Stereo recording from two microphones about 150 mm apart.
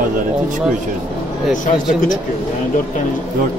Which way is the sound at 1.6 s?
60° left (ahead or behind).